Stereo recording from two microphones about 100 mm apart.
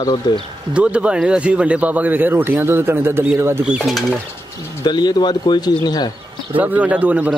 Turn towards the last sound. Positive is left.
turn(degrees=-15)  # may be behind; listen again after turning